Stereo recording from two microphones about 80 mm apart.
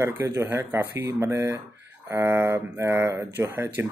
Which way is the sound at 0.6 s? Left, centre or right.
Right.